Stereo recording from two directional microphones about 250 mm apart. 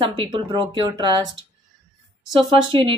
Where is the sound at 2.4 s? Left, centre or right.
Right.